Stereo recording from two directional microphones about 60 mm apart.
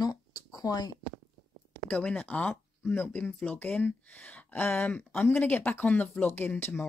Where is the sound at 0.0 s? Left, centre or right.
Left.